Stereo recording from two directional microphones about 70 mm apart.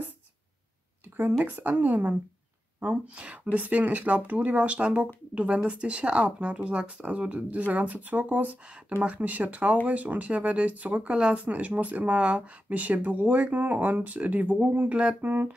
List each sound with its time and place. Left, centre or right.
1.4 s speech: right